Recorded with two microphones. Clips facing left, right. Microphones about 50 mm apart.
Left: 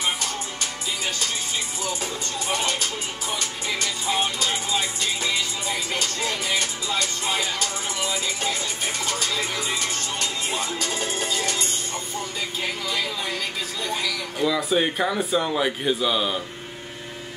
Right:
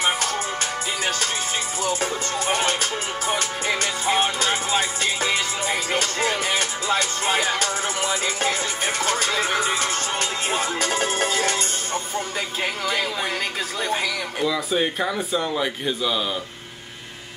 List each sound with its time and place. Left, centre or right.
1.8 s music: right
14.4 s speech: centre